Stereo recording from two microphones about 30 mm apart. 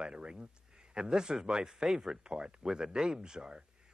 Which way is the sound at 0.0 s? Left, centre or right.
Right.